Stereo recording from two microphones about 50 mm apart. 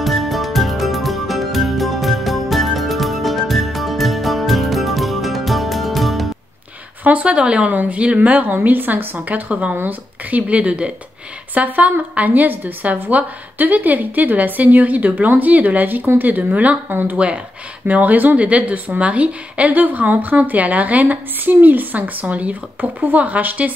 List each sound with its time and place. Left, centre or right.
0.0 s music: centre
7.0 s speech: right
9.5 s speech: right